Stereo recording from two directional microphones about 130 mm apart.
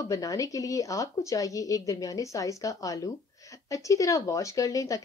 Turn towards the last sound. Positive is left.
turn(degrees=25)  # may be behind; listen again after turning